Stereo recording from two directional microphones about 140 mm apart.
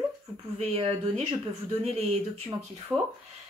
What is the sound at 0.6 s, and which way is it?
Speech, 45° right (ahead or behind).